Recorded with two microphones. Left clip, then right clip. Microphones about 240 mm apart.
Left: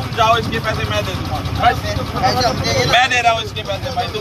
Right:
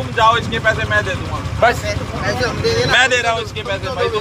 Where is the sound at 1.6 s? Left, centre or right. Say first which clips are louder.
Right 1 dB; centre.